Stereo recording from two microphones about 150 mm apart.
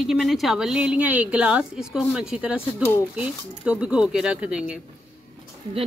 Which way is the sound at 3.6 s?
5° right (ahead or behind).